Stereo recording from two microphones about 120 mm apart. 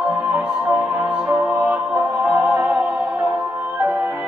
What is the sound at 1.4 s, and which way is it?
Music, 30° right (ahead or behind).